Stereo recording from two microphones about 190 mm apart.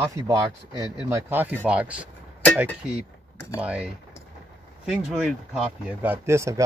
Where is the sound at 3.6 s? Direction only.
5° right (ahead or behind).